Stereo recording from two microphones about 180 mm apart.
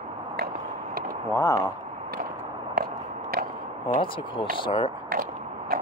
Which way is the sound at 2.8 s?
55° right (ahead or behind).